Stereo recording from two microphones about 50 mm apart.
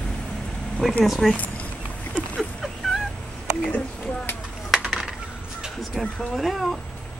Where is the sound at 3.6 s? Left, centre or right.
Left.